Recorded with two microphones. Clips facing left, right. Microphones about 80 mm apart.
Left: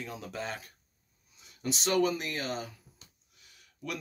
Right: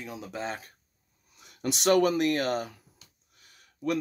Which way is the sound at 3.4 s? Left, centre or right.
Right.